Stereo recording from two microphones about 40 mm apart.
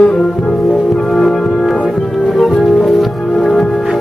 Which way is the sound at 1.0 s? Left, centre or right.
Centre.